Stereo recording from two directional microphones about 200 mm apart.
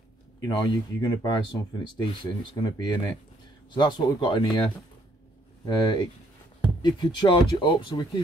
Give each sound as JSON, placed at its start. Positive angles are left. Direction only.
{"t": 0.4, "sound": "speech", "side_deg": 20}